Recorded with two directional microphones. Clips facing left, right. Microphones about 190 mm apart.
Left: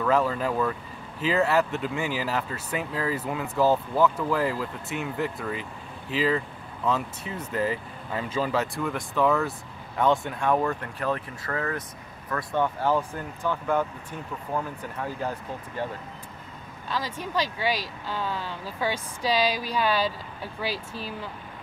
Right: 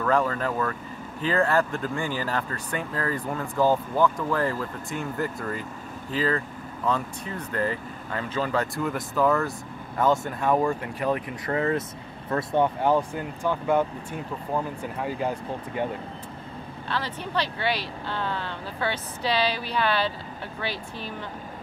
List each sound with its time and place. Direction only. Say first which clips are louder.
0.0 s speech: even; 5° left (ahead or behind); by 15.9 s 15° right (ahead or behind)
17.3 s speech: even; 10° left (ahead or behind)
20.7 s speech: left 1 dB; 35° left (ahead or behind)